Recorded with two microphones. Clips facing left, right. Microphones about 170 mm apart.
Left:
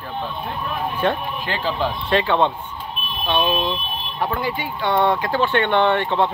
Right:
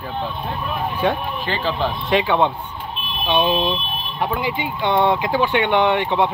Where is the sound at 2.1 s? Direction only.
15° right (ahead or behind).